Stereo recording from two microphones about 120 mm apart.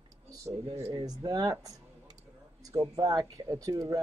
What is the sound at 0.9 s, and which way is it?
Speech, 35° right (ahead or behind).